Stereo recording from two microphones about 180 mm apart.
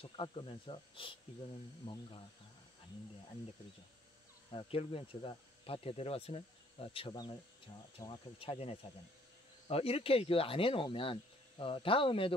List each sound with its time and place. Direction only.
0.0 s speech: 30° left (ahead or behind)
4.5 s speech: 30° left (ahead or behind)